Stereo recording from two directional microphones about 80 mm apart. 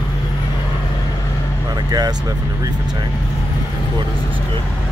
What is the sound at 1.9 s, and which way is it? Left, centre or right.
Speech, right.